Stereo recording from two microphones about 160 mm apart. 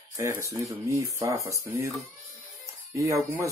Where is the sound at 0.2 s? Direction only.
15° right (ahead or behind).